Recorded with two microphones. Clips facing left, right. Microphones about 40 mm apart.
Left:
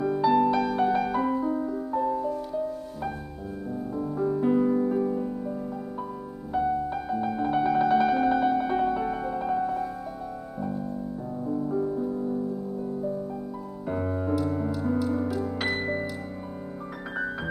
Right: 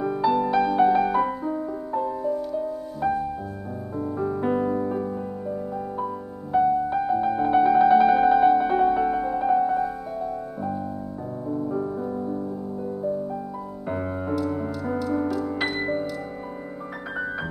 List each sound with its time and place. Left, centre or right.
0.0 s music: centre
3.9 s music: centre
13.8 s music: centre
15.4 s music: centre